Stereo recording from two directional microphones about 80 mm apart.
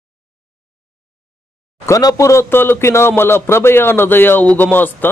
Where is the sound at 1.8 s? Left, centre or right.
Left.